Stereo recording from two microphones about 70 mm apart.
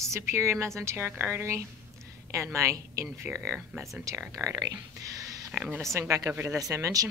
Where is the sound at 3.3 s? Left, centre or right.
Centre.